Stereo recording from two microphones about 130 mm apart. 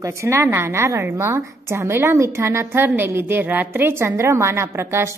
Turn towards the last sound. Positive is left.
turn(degrees=-20)  # may be behind; listen again after turning